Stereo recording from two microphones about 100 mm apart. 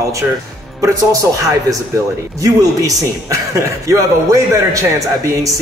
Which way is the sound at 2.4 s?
35° right (ahead or behind).